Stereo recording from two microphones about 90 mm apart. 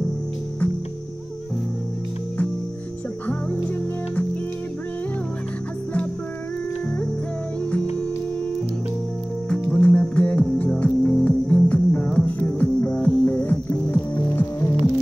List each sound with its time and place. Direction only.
3.3 s music: 15° left (ahead or behind)
9.5 s music: 10° left (ahead or behind); by 14.8 s 25° left (ahead or behind)